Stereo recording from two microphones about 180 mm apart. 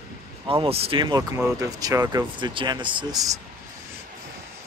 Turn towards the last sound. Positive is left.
turn(degrees=-20)  # may be behind; listen again after turning